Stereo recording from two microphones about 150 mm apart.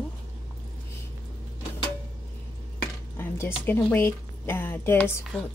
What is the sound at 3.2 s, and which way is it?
A woman's voice, 15° left (ahead or behind).